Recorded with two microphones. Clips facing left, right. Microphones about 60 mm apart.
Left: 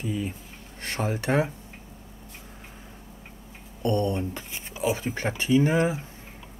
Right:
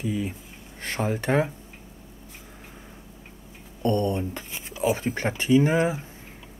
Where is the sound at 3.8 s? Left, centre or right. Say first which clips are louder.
Right 1 dB; left.